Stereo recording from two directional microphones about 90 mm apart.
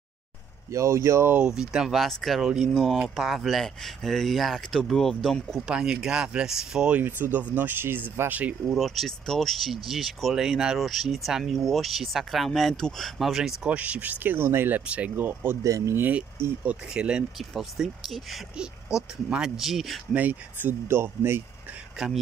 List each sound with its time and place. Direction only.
0.7 s speech: 35° right (ahead or behind)
1.5 s speech: 5° right (ahead or behind)
2.7 s speech: 5° left (ahead or behind)
5.7 s speech: 10° right (ahead or behind)
7.0 s speech: 20° right (ahead or behind)
8.6 s speech: centre (ahead or behind); by 15.5 s 20° right (ahead or behind)
15.6 s speech: 40° right (ahead or behind)
16.0 s speech: 20° right (ahead or behind); by 20.0 s centre (ahead or behind)
20.1 s speech: 20° right (ahead or behind)
21.9 s speech: 5° right (ahead or behind)